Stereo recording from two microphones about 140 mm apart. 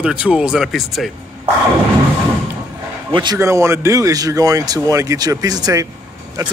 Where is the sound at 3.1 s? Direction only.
30° right (ahead or behind).